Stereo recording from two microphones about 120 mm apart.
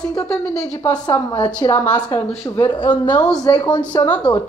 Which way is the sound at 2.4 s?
25° left (ahead or behind).